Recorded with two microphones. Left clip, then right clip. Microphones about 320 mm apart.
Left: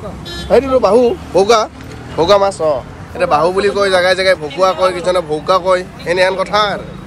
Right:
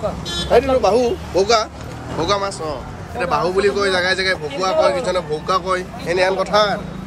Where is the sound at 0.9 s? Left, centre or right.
Left.